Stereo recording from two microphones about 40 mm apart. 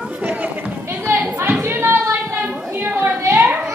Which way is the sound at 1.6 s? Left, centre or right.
Right.